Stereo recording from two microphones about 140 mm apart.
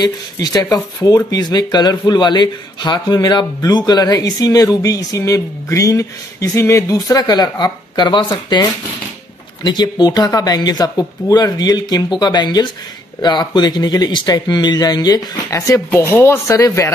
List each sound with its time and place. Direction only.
0.0 s speech: 30° left (ahead or behind)